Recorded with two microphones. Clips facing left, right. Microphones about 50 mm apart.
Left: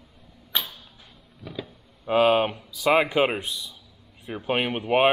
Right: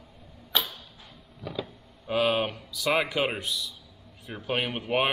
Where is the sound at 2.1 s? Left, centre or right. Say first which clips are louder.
Left 6 dB; left.